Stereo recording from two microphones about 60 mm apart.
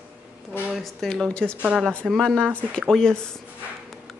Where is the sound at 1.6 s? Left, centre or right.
Right.